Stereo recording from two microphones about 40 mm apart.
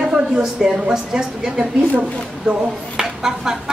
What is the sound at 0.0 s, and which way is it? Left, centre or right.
A woman's voice, centre.